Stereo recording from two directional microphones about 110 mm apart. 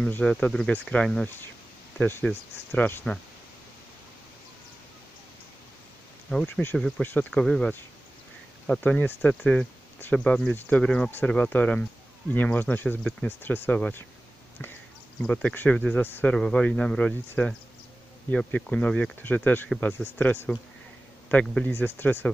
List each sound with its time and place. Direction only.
0.1 s speech: 15° left (ahead or behind)
6.3 s speech: 15° left (ahead or behind)